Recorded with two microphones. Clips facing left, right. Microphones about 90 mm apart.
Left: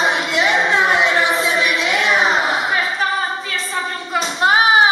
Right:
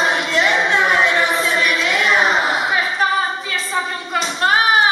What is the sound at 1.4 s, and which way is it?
Choir, 10° left (ahead or behind).